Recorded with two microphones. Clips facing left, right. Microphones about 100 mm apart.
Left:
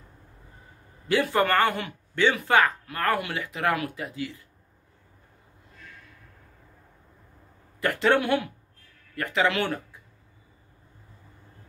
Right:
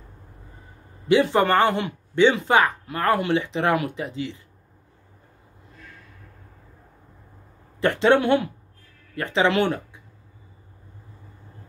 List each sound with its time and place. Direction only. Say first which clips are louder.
1.0 s speech: right 5 dB; 20° right (ahead or behind)
7.8 s speech: right 4 dB; 25° right (ahead or behind)